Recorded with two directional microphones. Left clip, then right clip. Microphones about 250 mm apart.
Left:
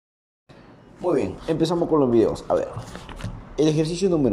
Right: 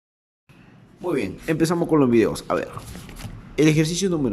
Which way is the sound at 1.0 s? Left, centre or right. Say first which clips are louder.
Left 2 dB; centre.